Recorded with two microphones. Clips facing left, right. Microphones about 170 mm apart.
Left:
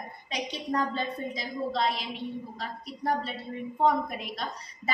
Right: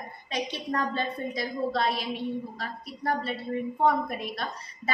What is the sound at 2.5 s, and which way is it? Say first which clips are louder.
Speech: even; 20° left (ahead or behind).